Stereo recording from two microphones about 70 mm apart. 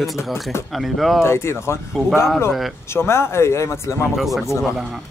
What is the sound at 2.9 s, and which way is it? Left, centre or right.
Speech, left.